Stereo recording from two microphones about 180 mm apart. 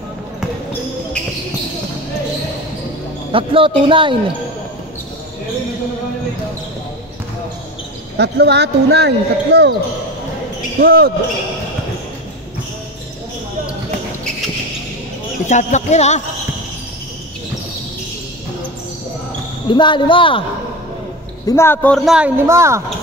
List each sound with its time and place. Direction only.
3.3 s a man's voice: 30° right (ahead or behind)
8.2 s speech: 70° right (ahead or behind)
10.8 s speech: 55° right (ahead or behind)
15.4 s speech: 40° left (ahead or behind)
19.7 s speech: 25° left (ahead or behind)
21.5 s a man's voice: 15° left (ahead or behind); by 22.3 s 5° right (ahead or behind)
22.5 s speech: 15° right (ahead or behind)